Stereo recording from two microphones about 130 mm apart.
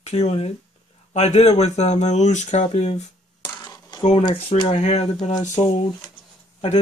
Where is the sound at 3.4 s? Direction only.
30° left (ahead or behind).